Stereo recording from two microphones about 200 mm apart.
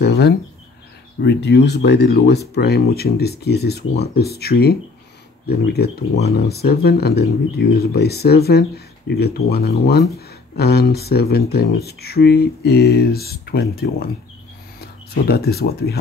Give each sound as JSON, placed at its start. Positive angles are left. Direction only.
{"t": 1.2, "sound": "speech", "side_deg": 55}